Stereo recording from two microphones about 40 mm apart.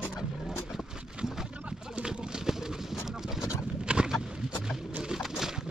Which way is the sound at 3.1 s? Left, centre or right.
Centre.